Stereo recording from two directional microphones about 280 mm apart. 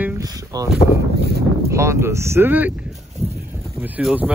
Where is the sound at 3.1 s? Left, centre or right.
Right.